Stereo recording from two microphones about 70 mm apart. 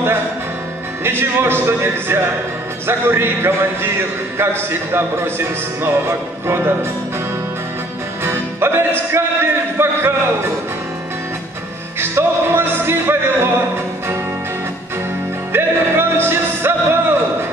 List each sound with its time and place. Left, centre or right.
1.0 s a man's voice: right
8.2 s music: right
12.0 s music: right
15.5 s music: right